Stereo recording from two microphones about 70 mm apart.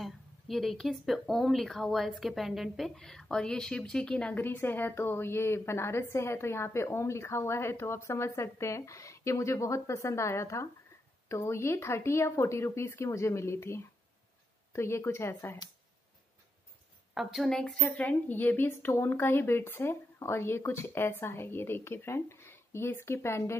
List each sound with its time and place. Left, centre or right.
0.0 s a woman's voice: centre
4.4 s a woman's voice: left
17.1 s speech: centre
17.8 s a woman's voice: left